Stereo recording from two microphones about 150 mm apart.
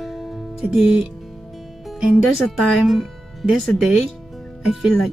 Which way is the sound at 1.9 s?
5° right (ahead or behind).